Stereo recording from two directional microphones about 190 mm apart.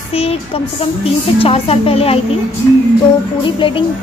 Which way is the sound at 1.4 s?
30° left (ahead or behind).